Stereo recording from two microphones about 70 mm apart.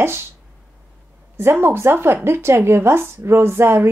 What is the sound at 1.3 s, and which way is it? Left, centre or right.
Speech, right.